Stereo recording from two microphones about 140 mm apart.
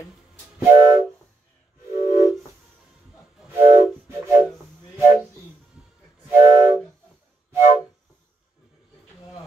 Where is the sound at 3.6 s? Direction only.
20° right (ahead or behind).